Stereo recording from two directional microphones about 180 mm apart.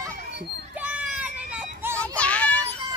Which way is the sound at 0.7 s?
5° right (ahead or behind).